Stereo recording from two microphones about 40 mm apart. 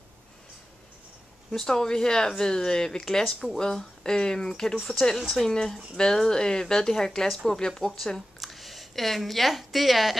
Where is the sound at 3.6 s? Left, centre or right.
Centre.